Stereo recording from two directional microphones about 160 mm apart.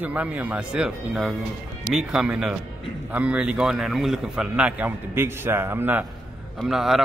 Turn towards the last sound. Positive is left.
turn(degrees=0)  # may be behind; listen again after turning